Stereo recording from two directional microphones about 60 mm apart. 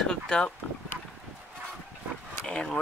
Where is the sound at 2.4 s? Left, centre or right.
Centre.